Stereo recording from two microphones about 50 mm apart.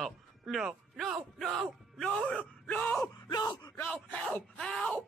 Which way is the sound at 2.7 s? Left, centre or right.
Left.